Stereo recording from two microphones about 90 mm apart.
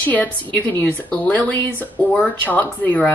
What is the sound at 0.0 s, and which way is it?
A woman's voice, 20° left (ahead or behind).